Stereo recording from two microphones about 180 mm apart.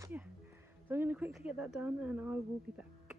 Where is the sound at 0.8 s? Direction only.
10° right (ahead or behind).